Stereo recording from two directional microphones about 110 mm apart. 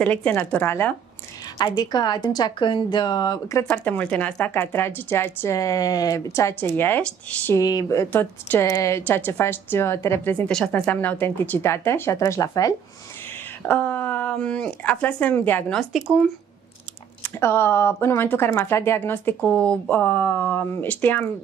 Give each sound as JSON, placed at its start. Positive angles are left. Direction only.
{"t": 0.0, "sound": "speech", "side_deg": 15}
{"t": 1.6, "sound": "speech", "side_deg": 40}
{"t": 3.6, "sound": "speech", "side_deg": 10}
{"t": 7.5, "sound": "speech", "side_deg": 30}
{"t": 8.1, "sound": "speech", "side_deg": 20}
{"t": 10.3, "sound": "speech", "side_deg": 10}
{"t": 13.6, "sound": "speech", "side_deg": 15}
{"t": 15.7, "sound": "speech", "side_deg": 0}
{"t": 17.2, "sound": "speech", "side_deg": 20}